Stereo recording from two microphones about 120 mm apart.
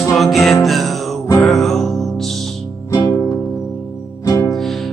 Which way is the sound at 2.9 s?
30° left (ahead or behind).